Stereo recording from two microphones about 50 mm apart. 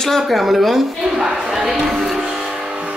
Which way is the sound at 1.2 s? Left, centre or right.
Centre.